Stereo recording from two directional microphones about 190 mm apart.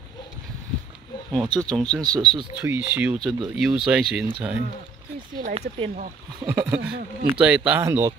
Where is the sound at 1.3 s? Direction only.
25° right (ahead or behind).